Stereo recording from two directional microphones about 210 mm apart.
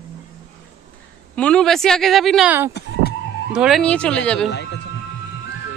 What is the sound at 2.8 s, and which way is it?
Speech, 50° left (ahead or behind).